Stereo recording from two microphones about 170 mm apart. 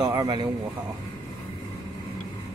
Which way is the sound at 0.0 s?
25° right (ahead or behind).